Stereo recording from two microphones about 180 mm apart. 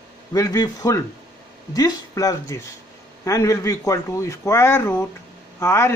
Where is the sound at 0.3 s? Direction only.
20° left (ahead or behind).